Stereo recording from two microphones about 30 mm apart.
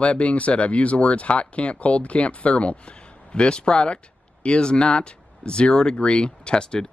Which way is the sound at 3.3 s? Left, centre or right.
Left.